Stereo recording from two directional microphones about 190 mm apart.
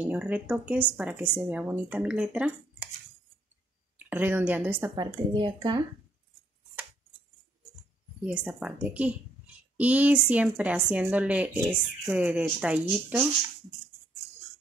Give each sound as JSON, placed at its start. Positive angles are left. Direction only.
{"t": 0.0, "sound": "speech", "side_deg": -5}
{"t": 4.0, "sound": "speech", "side_deg": -10}
{"t": 4.9, "sound": "speech", "side_deg": -20}
{"t": 8.3, "sound": "a woman's voice", "side_deg": -5}